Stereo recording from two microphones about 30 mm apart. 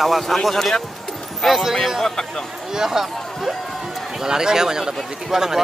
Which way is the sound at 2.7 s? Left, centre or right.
Centre.